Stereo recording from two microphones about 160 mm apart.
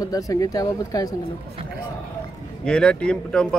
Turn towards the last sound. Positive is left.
turn(degrees=5)  # may be behind; listen again after turning